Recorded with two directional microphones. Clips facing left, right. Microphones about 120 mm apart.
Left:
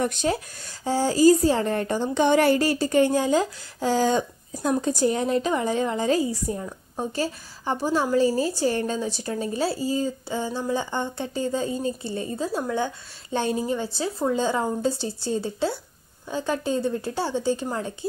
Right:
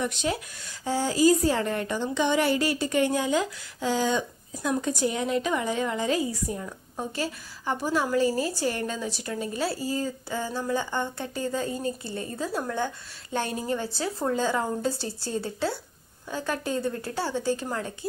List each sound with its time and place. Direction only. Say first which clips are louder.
0.0 s a woman's voice: left 4 dB; 45° left (ahead or behind); by 17.9 s 25° left (ahead or behind)